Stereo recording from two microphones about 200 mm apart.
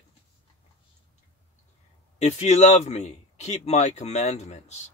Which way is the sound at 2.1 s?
35° left (ahead or behind).